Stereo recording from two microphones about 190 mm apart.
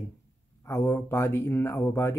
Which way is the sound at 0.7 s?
15° left (ahead or behind).